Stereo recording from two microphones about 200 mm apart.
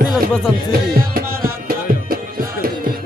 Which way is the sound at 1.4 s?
45° right (ahead or behind).